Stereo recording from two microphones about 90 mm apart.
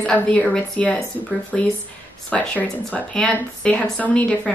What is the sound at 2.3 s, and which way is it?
A woman's voice, 10° left (ahead or behind).